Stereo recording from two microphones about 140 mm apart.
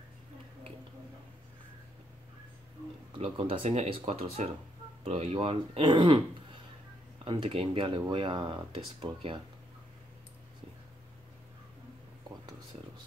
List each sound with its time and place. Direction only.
3.2 s speech: 40° right (ahead or behind)
7.2 s speech: 40° right (ahead or behind)